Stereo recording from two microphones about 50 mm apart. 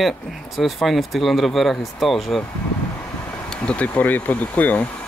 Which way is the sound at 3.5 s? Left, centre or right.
Left.